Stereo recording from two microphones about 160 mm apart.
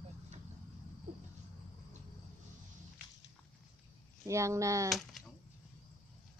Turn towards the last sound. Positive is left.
turn(degrees=-20)  # may be behind; listen again after turning